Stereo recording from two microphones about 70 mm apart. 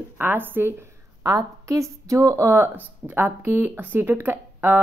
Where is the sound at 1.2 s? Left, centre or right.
Right.